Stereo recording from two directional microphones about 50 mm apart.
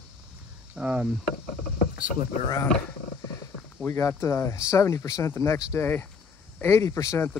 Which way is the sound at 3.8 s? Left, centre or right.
Left.